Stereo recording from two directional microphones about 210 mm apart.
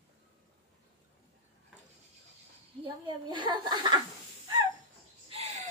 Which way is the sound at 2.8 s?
20° right (ahead or behind).